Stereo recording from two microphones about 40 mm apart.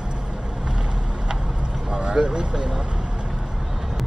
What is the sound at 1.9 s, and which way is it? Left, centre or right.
Vehicle, right.